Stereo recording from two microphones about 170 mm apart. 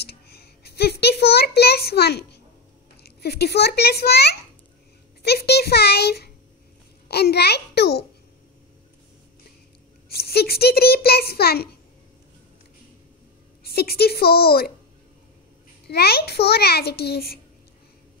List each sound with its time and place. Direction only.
0.0 s a sound: 70° left (ahead or behind)
3.0 s a child's voice: 70° left (ahead or behind)
10.0 s a child's voice: 65° left (ahead or behind)
13.7 s a child's voice: 65° left (ahead or behind)
15.9 s a child's voice: 70° left (ahead or behind)